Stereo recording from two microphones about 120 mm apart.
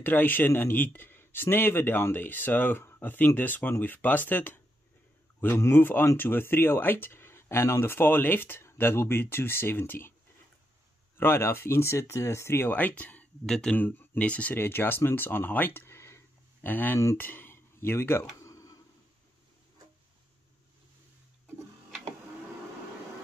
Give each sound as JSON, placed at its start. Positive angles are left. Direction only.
{"t": 0.0, "sound": "speech", "side_deg": 15}
{"t": 11.1, "sound": "speech", "side_deg": 20}
{"t": 18.3, "sound": "a sound", "side_deg": 25}